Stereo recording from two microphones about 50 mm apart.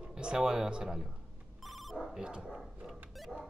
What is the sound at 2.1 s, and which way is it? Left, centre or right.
Dog, centre.